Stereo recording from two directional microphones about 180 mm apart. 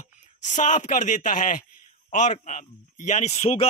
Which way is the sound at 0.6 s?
40° left (ahead or behind).